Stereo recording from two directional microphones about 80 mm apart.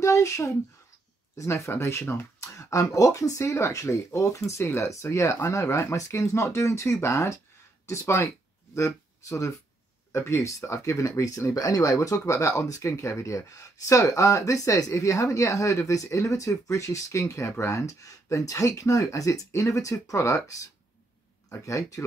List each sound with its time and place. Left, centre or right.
0.0 s speech: left